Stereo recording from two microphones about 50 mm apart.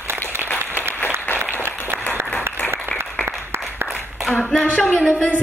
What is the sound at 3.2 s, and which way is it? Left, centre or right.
Applause, right.